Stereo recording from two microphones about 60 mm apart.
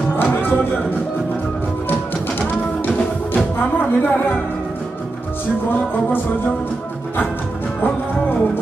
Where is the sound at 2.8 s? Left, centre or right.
Left.